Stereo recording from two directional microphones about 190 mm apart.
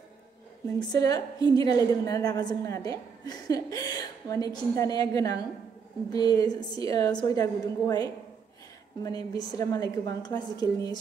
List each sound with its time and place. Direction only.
0.7 s a woman's voice: 20° left (ahead or behind)